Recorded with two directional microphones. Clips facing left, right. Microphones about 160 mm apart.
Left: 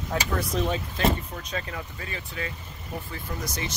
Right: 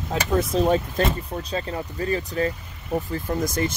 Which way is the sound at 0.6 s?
45° right (ahead or behind).